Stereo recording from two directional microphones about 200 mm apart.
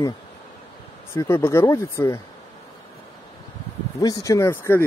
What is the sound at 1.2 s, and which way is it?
Speech, 10° left (ahead or behind).